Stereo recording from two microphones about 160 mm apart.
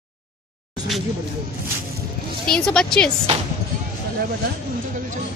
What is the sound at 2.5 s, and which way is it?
Speech, 5° left (ahead or behind).